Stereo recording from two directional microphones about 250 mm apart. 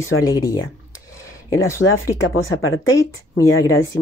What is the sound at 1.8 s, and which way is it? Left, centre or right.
Speech, left.